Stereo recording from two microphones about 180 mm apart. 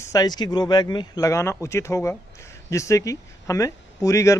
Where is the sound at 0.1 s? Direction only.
20° left (ahead or behind).